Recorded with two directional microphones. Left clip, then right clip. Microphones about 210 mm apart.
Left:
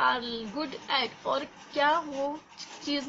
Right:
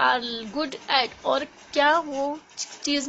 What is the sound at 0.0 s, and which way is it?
A woman's voice, 45° right (ahead or behind).